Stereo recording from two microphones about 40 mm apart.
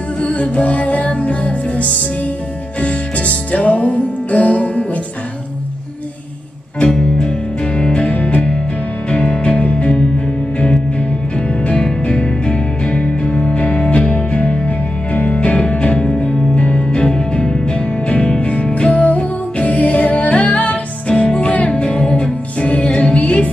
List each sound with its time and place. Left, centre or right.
0.2 s music: left
6.8 s music: left
11.3 s music: left
15.5 s music: left
22.8 s music: left
23.1 s music: left